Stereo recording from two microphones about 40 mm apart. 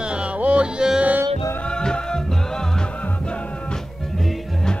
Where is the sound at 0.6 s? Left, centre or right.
Centre.